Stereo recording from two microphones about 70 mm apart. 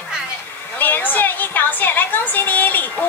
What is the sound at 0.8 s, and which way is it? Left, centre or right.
A woman's voice, left.